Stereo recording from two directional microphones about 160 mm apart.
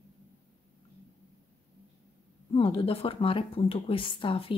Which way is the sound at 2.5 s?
30° left (ahead or behind).